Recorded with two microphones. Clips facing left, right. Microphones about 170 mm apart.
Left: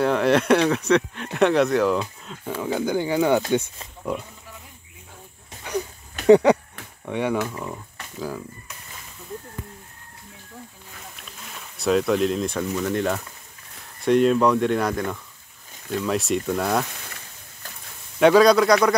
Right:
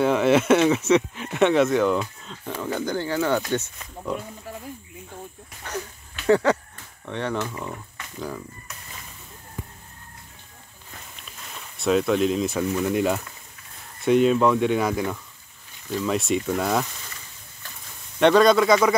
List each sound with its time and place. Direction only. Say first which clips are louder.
0.0 s speech: right 1 dB; centre (ahead or behind); by 3.7 s 15° left (ahead or behind)
6.2 s a sound: left 5 dB; 15° left (ahead or behind)
7.1 s speech: left 4 dB; 10° left (ahead or behind)
7.4 s speech: left 1 dB; centre (ahead or behind)
8.2 s a sound: left 2 dB; 5° left (ahead or behind)
11.5 s speech: even; centre (ahead or behind)
18.2 s speech: left 2 dB; centre (ahead or behind)